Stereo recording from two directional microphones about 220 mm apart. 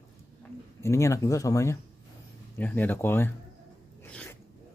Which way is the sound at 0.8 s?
15° left (ahead or behind).